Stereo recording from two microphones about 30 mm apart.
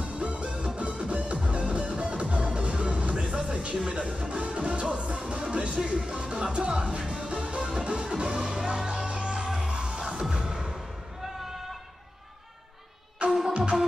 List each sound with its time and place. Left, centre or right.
0.0 s music: right
5.9 s speech: right
7.2 s music: right
13.2 s music: right